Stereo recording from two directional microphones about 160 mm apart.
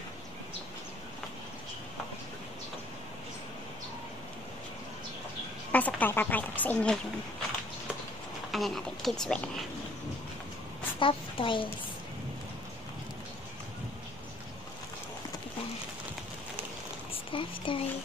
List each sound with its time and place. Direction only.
5.7 s a woman's voice: 10° left (ahead or behind)
8.5 s a woman's voice: centre (ahead or behind)
11.0 s a child's voice: 35° left (ahead or behind)
17.1 s a sound: 35° left (ahead or behind)